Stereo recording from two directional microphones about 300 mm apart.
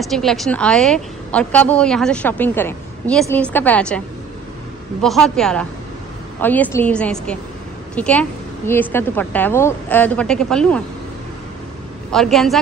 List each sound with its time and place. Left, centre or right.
0.0 s a woman's voice: centre
5.0 s a woman's voice: centre
12.1 s a woman's voice: centre